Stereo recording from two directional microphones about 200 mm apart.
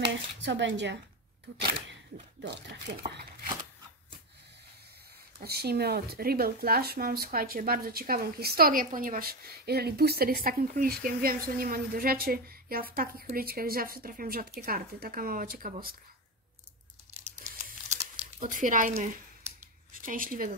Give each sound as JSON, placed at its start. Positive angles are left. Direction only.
{"t": 0.1, "sound": "speech", "side_deg": -65}
{"t": 2.4, "sound": "speech", "side_deg": -55}
{"t": 5.4, "sound": "speech", "side_deg": -50}
{"t": 18.4, "sound": "speech", "side_deg": -40}